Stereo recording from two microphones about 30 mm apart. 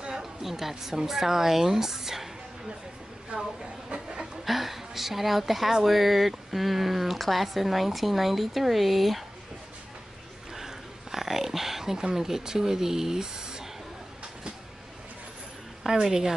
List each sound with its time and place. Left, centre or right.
0.2 s a woman's voice: centre
3.9 s pant: right
4.5 s a woman's voice: centre
10.5 s speech: centre
16.0 s a woman's voice: centre